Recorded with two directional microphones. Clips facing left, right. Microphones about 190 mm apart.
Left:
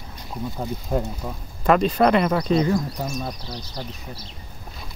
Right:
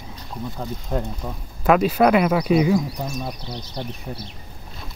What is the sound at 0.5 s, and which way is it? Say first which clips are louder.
Speech: left 2 dB; 10° left (ahead or behind).